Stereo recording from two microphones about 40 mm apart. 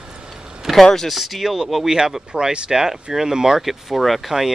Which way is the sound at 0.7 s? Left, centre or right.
Centre.